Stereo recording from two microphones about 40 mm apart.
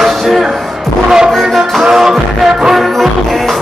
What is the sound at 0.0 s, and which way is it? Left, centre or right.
Music, centre.